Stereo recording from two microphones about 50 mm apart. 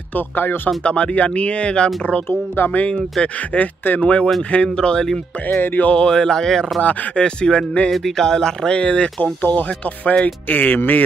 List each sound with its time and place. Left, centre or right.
0.1 s speech: left
0.8 s speech: left
2.2 s speech: left
3.2 s speech: centre
3.5 s speech: left
4.0 s speech: left
5.0 s speech: centre
5.8 s speech: left
6.0 s speech: centre
6.8 s speech: left
7.2 s speech: centre
7.9 s speech: centre; by 9.1 s left
9.2 s speech: left